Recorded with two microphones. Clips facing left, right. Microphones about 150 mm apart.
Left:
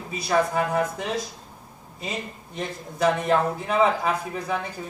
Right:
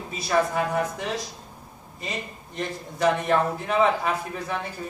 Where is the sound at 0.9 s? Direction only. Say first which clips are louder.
Left 1 dB; centre (ahead or behind).